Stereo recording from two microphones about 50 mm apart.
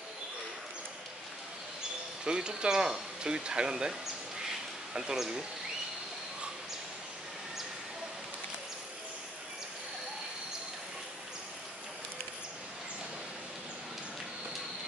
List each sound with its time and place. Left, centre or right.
2.2 s speech: centre